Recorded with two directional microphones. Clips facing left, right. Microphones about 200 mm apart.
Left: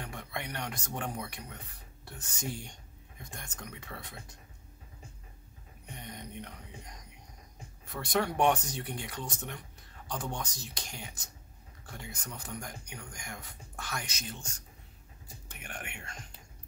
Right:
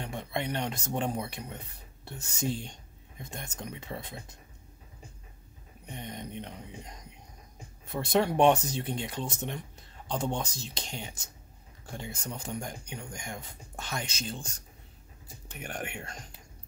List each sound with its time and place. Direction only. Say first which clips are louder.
0.0 s speech: right 6 dB; 25° right (ahead or behind)
5.9 s a sound: right 5 dB; 25° right (ahead or behind)
7.9 s speech: right 5 dB; 25° right (ahead or behind)
15.6 s speech: right 7 dB; 40° right (ahead or behind)